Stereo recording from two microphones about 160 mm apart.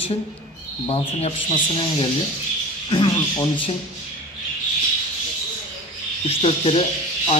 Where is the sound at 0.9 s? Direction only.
35° left (ahead or behind).